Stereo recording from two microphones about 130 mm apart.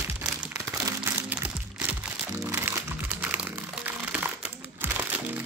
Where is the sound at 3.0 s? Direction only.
10° right (ahead or behind).